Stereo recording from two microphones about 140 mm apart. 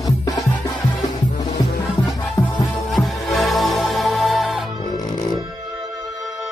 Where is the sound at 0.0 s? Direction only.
25° left (ahead or behind).